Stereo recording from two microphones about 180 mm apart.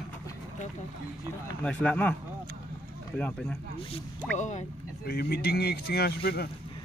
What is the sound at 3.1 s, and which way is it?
Speech, 5° left (ahead or behind).